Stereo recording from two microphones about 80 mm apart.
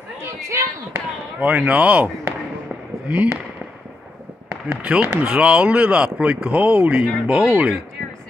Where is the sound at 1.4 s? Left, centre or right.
Centre.